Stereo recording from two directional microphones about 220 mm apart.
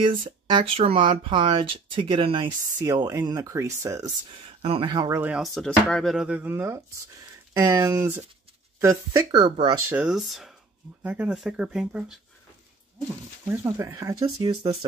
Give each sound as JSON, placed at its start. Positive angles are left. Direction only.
{"t": 0.0, "sound": "speech", "side_deg": -20}
{"t": 4.6, "sound": "speech", "side_deg": -25}
{"t": 9.8, "sound": "speech", "side_deg": -5}